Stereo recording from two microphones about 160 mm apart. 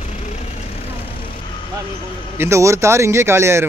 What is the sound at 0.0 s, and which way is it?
Vehicle, 45° left (ahead or behind).